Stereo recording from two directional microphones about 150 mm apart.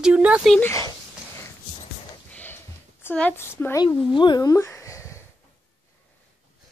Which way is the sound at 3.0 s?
10° left (ahead or behind).